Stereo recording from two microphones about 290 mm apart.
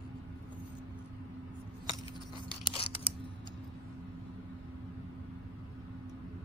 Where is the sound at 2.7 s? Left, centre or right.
Centre.